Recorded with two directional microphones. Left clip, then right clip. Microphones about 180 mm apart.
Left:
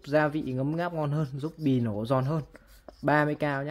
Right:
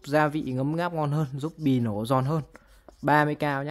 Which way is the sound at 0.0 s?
30° right (ahead or behind).